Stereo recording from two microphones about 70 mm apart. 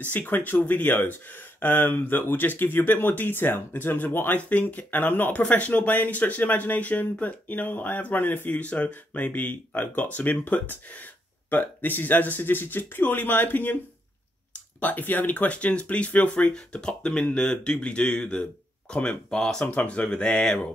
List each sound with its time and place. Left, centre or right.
0.0 s speech: left
14.8 s speech: left
16.5 s speech: centre
19.6 s speech: left